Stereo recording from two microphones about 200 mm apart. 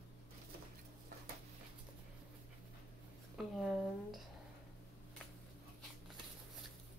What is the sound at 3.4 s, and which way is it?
Speech, centre (ahead or behind).